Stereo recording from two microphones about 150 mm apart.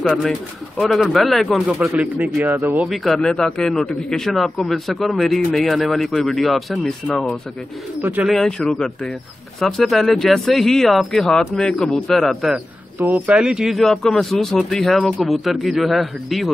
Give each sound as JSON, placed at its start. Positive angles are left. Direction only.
{"t": 0.0, "sound": "a man's voice", "side_deg": 5}
{"t": 2.5, "sound": "speech", "side_deg": -20}
{"t": 2.8, "sound": "a man's voice", "side_deg": 0}
{"t": 13.0, "sound": "a man's voice", "side_deg": -10}